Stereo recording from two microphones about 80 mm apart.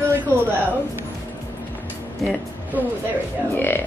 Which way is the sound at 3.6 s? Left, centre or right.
Left.